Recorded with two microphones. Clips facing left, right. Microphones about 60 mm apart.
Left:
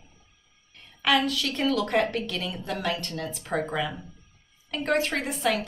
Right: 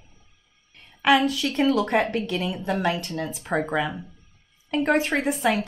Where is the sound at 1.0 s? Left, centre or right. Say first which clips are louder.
Right 4 dB; centre.